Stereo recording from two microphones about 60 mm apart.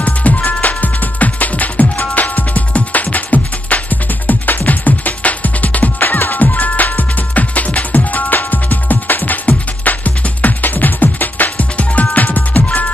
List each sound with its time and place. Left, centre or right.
0.0 s music: left